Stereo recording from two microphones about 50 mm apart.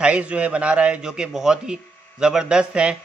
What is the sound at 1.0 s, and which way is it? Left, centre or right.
A man's voice, centre.